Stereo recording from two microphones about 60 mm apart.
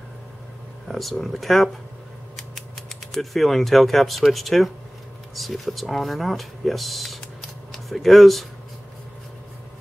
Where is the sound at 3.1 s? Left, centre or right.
Centre.